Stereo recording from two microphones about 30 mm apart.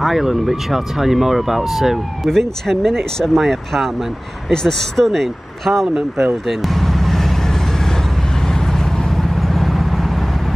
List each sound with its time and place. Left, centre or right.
0.0 s speech: centre
2.2 s speech: centre
6.4 s vehicle: centre
9.4 s vehicle: centre